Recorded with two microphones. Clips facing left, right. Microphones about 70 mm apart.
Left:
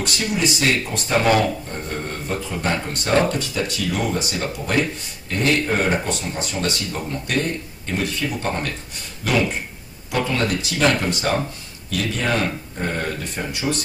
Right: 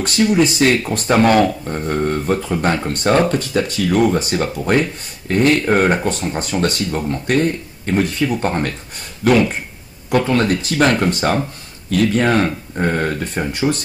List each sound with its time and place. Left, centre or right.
0.0 s speech: right
1.9 s speech: right